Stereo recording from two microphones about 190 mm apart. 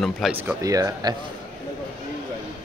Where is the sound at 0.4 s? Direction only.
15° right (ahead or behind).